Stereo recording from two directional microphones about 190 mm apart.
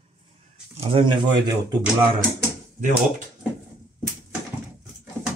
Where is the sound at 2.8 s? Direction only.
40° right (ahead or behind).